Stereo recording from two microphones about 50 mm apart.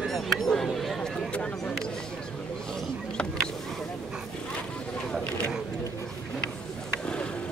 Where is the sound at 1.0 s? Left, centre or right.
Centre.